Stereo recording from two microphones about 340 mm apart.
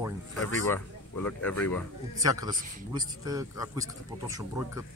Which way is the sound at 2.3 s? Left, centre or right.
Centre.